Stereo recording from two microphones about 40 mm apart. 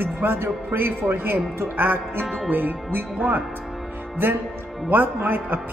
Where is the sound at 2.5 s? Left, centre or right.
Right.